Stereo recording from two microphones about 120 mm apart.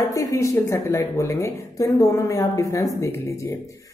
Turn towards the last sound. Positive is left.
turn(degrees=25)  # may be behind; listen again after turning